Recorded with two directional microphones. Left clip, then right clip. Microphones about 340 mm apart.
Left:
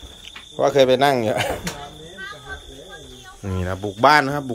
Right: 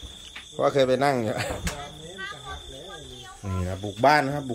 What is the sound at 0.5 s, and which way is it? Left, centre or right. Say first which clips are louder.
Speech: left 6 dB; centre.